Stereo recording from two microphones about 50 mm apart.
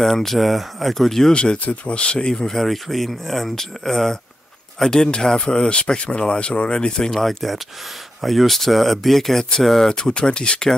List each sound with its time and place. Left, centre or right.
0.0 s speech: centre
1.3 s speech: left
7.1 s speech: centre